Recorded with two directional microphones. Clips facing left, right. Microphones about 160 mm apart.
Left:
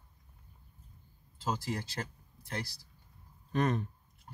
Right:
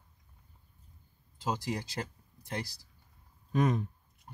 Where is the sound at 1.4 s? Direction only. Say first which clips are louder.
Right 1 dB; 15° right (ahead or behind).